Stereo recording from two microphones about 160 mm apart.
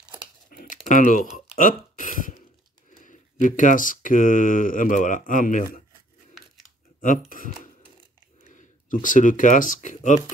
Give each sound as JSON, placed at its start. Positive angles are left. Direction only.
{"t": 0.5, "sound": "typing", "side_deg": 60}
{"t": 1.3, "sound": "speech", "side_deg": 50}
{"t": 7.0, "sound": "speech", "side_deg": 55}